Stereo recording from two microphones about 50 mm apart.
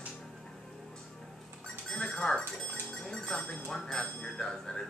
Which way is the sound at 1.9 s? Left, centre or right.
Centre.